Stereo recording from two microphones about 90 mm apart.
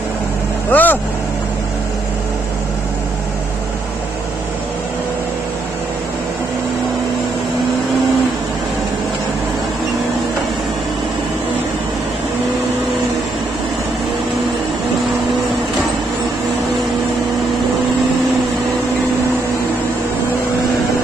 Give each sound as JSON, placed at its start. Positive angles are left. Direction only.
{"t": 0.7, "sound": "vehicle", "side_deg": 20}